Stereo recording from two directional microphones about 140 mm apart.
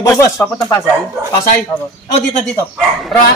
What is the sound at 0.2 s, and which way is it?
Speech, 25° left (ahead or behind).